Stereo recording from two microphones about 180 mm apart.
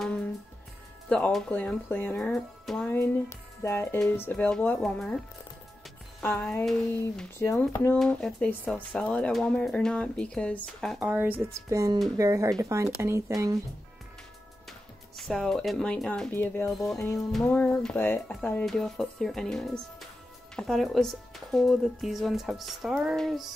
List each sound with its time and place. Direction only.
1.0 s speech: 5° left (ahead or behind)
6.6 s speech: centre (ahead or behind)
7.3 s speech: 15° left (ahead or behind)
11.0 s speech: 10° right (ahead or behind)
14.7 s speech: centre (ahead or behind)